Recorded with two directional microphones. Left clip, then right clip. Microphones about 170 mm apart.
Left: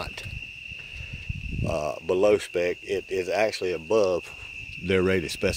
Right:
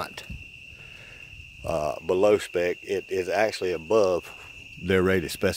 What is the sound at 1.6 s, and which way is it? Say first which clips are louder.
Speech: right 1 dB; 15° right (ahead or behind).